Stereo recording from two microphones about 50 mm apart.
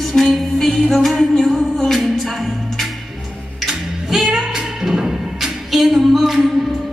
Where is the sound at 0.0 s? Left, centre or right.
Centre.